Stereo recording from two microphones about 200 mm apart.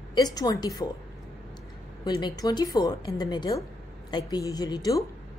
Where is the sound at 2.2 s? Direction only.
20° left (ahead or behind).